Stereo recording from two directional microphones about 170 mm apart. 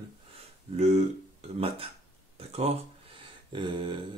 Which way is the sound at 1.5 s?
35° right (ahead or behind).